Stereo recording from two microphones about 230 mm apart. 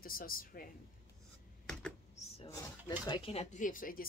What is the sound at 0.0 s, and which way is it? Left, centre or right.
Speech, left.